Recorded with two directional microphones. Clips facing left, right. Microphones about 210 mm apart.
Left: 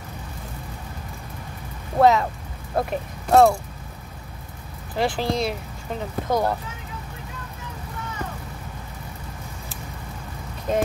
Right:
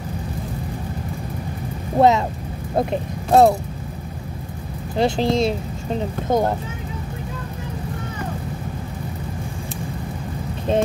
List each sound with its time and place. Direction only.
2.0 s speech: 20° right (ahead or behind)
4.9 s speech: 25° right (ahead or behind)
10.7 s speech: 30° right (ahead or behind)